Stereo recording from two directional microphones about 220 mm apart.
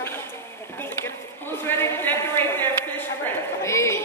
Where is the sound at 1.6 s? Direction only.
10° left (ahead or behind).